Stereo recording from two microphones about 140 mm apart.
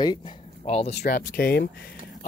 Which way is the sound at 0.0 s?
30° left (ahead or behind).